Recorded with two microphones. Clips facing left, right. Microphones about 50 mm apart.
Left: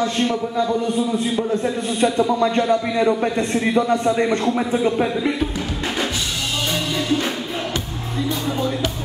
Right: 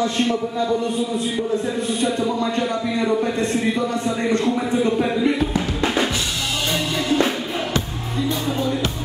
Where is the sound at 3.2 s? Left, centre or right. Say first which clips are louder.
Even; left.